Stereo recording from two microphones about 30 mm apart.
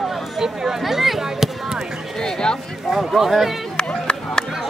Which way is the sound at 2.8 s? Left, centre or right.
Centre.